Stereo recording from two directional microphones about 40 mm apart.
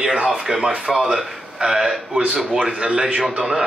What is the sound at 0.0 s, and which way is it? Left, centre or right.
A man's voice, centre.